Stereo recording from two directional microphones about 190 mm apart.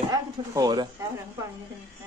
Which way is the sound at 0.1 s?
20° right (ahead or behind).